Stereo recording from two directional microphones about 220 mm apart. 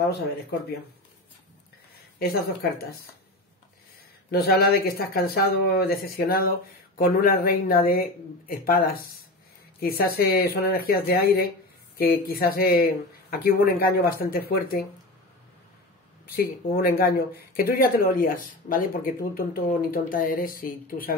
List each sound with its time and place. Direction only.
2.1 s speech: 45° left (ahead or behind)
4.3 s speech: 45° left (ahead or behind)
16.3 s speech: 45° left (ahead or behind)